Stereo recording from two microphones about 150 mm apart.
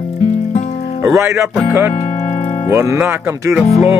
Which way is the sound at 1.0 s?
20° right (ahead or behind).